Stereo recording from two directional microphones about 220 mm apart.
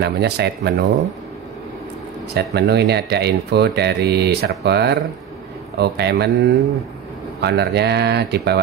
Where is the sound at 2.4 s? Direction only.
50° right (ahead or behind).